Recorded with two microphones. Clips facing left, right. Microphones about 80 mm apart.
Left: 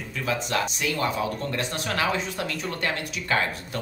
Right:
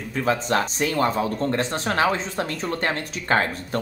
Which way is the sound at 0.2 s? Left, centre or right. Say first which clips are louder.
Right 5 dB; right.